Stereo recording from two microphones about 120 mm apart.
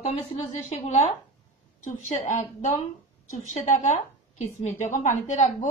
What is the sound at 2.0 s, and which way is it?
A woman's voice, 80° left.